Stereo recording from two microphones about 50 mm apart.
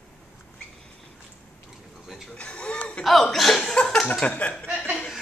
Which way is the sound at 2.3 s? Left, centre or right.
Left.